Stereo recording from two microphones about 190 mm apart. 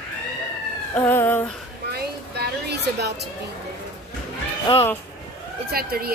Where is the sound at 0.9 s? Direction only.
10° left (ahead or behind).